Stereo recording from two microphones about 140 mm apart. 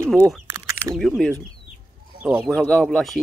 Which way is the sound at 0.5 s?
20° right (ahead or behind).